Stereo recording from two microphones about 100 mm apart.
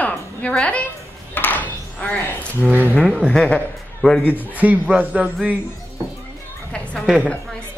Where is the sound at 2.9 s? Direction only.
5° left (ahead or behind).